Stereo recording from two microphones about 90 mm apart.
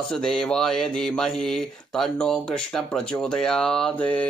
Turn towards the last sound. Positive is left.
turn(degrees=15)  # may be behind; listen again after turning